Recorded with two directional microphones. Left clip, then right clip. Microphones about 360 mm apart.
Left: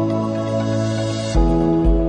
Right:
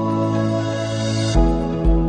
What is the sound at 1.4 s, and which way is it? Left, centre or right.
Music, centre.